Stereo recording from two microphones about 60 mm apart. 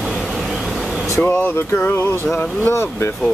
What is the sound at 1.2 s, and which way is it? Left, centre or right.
Speech, left.